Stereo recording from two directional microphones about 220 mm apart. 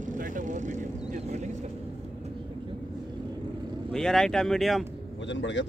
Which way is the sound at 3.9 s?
Centre (ahead or behind).